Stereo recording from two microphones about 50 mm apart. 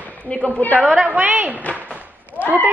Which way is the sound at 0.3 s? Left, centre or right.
Left.